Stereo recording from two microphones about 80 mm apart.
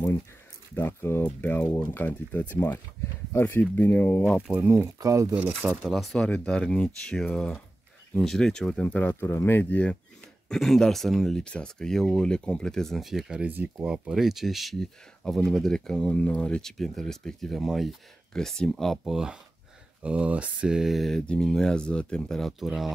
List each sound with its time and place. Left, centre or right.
0.7 s speech: left
4.5 s speech: right
4.8 s speech: right
5.3 s speech: centre
8.8 s speech: left
10.5 s speech: centre
13.4 s speech: right
13.8 s speech: centre
19.0 s mantra: centre
21.3 s speech: centre